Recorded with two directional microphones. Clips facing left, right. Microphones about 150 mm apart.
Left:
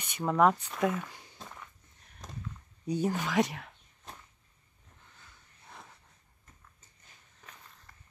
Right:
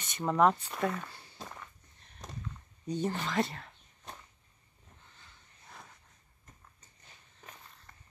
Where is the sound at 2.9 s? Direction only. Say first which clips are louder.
Left 3 dB; 10° left (ahead or behind).